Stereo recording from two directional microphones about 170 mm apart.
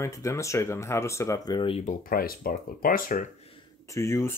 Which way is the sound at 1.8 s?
55° left (ahead or behind).